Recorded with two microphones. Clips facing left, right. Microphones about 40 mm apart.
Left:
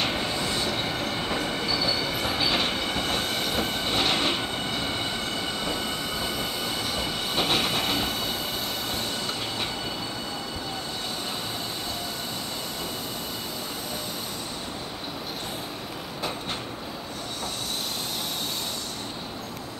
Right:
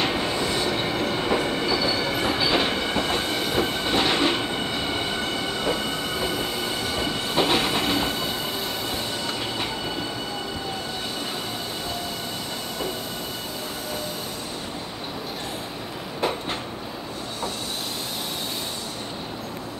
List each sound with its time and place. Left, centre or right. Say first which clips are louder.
0.0 s train: right 3 dB; centre